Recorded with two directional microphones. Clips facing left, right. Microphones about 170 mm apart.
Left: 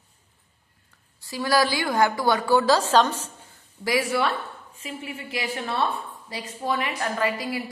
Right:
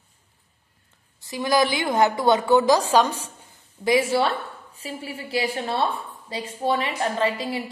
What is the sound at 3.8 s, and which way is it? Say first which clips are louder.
A woman's voice: right 4 dB; 25° right (ahead or behind).